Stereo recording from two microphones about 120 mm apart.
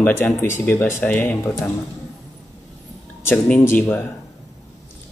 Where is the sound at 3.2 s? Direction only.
15° left (ahead or behind).